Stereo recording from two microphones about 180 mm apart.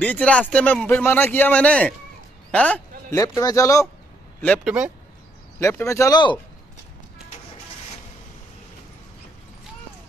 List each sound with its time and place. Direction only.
0.0 s a man's voice: 5° left (ahead or behind)
3.2 s speech: 20° left (ahead or behind)